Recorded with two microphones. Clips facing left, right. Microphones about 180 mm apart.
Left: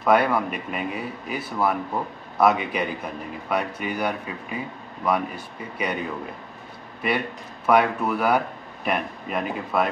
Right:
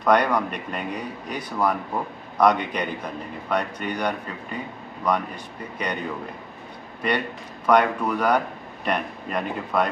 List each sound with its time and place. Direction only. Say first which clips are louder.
0.0 s speech: even; 5° left (ahead or behind)
7.6 s speech: even; 5° left (ahead or behind)